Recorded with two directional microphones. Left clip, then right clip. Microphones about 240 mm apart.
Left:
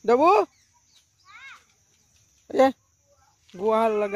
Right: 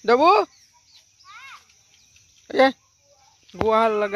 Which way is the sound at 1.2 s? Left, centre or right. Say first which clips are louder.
Right 2 dB; left.